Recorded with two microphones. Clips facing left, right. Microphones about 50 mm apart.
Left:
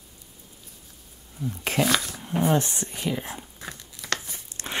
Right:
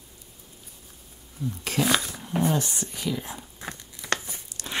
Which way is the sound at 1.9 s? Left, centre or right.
Centre.